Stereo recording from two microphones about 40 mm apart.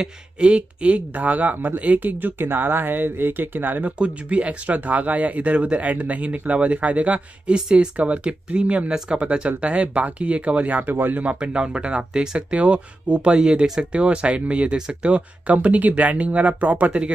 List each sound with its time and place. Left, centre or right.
0.0 s speech: right
2.2 s speech: right
4.0 s speech: right
11.2 s speech: right
12.5 s speech: right